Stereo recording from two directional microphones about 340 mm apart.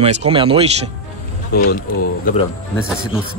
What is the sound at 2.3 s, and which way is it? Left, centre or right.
Speech, left.